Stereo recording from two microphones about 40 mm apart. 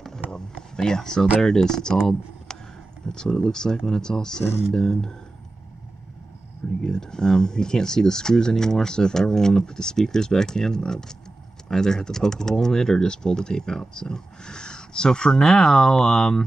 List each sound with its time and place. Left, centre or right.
0.0 s a sound: centre
1.4 s speech: centre
6.8 s speech: centre